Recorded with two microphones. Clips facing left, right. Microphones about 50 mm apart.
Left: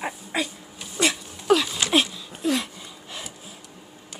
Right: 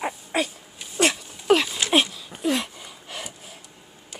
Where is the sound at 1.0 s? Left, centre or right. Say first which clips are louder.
Right 2 dB; right.